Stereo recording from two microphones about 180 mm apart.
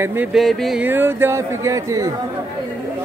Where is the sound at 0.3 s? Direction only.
Centre (ahead or behind).